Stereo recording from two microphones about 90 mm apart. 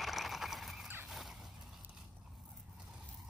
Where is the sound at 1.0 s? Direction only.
Centre (ahead or behind).